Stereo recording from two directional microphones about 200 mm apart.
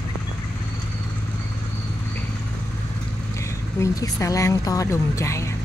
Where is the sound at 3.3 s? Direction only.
15° left (ahead or behind).